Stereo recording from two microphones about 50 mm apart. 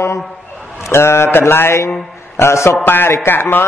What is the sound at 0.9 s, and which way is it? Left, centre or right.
A man's voice, left.